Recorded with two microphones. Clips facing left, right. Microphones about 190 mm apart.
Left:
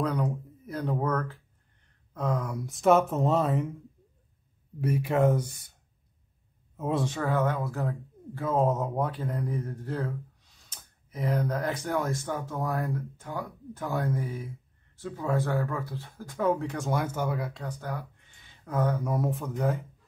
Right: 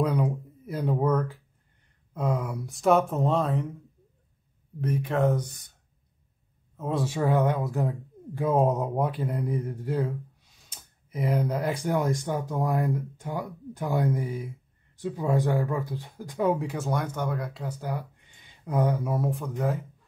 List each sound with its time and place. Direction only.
0.0 s a sound: 10° right (ahead or behind)
2.1 s speech: 10° right (ahead or behind)
4.7 s speech: 10° left (ahead or behind)
6.8 s speech: centre (ahead or behind)
7.1 s speech: 15° right (ahead or behind)
19.0 s speech: centre (ahead or behind)